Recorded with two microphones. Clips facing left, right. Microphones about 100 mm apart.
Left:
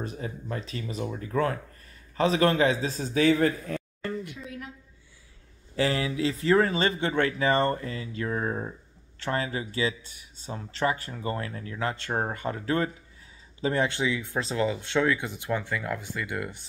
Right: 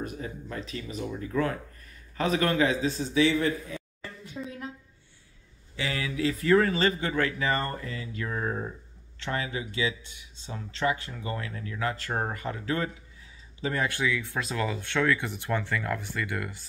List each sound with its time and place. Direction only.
0.0 s speech: 35° left (ahead or behind); by 4.4 s 65° left (ahead or behind)
4.5 s a sound: 30° right (ahead or behind)
5.8 s speech: 30° left (ahead or behind)